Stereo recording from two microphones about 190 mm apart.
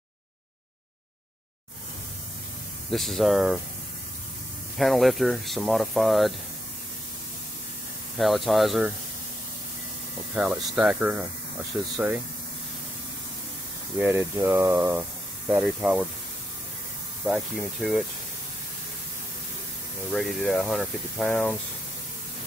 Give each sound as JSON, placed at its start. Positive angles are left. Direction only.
{"t": 2.9, "sound": "speech", "side_deg": 0}
{"t": 4.7, "sound": "speech", "side_deg": 0}
{"t": 8.2, "sound": "speech", "side_deg": 0}
{"t": 10.3, "sound": "speech", "side_deg": -5}
{"t": 13.9, "sound": "speech", "side_deg": -10}
{"t": 17.3, "sound": "speech", "side_deg": 0}
{"t": 20.1, "sound": "speech", "side_deg": 5}